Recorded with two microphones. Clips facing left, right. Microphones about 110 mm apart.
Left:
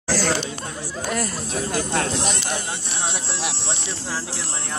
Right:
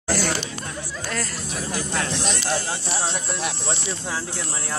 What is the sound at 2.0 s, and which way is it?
Speech, 40° left (ahead or behind).